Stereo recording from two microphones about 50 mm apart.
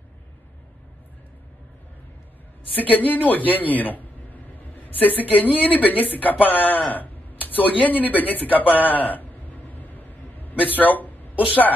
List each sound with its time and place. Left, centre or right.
2.7 s a man's voice: left
6.9 s a sound: left
7.8 s speech: left
9.8 s vehicle: left
10.6 s speech: left